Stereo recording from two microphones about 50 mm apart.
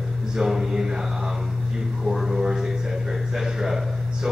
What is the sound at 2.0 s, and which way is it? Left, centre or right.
A man's voice, centre.